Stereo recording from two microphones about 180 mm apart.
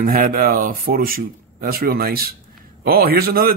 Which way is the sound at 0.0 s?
50° right (ahead or behind).